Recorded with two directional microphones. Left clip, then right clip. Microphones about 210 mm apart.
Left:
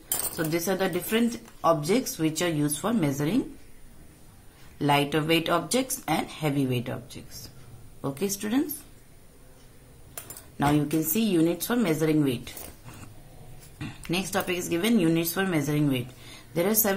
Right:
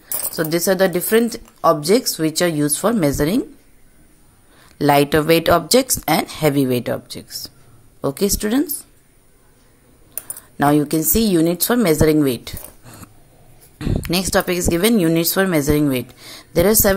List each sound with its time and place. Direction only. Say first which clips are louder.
0.4 s speech: right 11 dB; 40° right (ahead or behind)
4.7 s speech: right 10 dB; 50° right (ahead or behind)
10.6 s speech: right 9 dB; 45° right (ahead or behind)